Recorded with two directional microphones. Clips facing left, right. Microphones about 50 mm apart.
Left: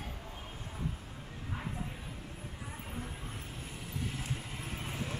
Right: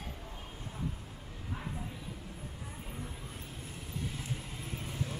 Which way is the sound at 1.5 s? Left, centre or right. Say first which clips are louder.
Left 1 dB; centre.